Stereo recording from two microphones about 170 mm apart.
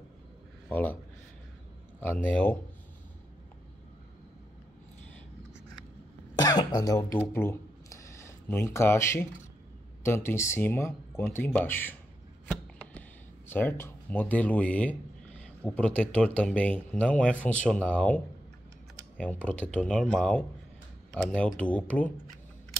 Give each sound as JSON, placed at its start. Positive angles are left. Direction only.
{"t": 0.7, "sound": "speech", "side_deg": 10}
{"t": 2.0, "sound": "speech", "side_deg": 10}
{"t": 6.3, "sound": "throat clearing", "side_deg": 20}
{"t": 10.0, "sound": "speech", "side_deg": 15}
{"t": 13.5, "sound": "speech", "side_deg": 10}